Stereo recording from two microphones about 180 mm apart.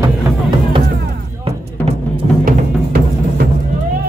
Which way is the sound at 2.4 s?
55° right (ahead or behind).